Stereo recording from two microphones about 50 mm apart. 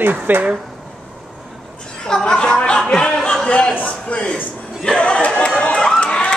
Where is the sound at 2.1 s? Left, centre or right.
Centre.